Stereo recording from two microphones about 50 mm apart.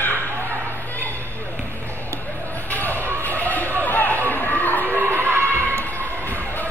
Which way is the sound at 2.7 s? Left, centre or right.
Left.